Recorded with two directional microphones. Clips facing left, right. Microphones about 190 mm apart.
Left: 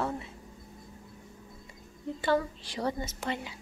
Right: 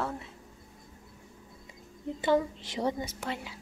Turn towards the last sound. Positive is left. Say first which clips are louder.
# left 2 dB
turn(degrees=0)  # may be behind; listen again after turning